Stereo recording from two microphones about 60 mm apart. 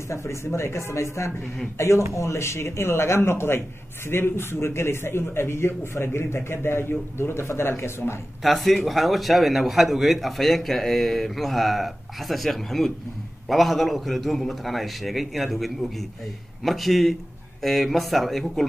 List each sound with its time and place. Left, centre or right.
0.1 s a man's voice: left
8.4 s a man's voice: centre